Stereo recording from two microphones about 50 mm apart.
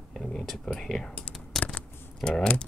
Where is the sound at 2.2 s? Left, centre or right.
Centre.